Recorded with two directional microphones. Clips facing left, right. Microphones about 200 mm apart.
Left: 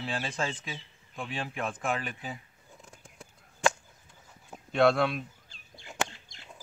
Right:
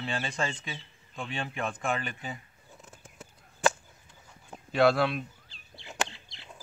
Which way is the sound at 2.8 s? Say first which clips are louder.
Right 2 dB; 5° right (ahead or behind).